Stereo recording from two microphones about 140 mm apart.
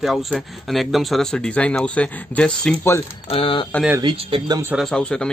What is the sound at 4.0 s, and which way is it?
Speech, 35° right (ahead or behind).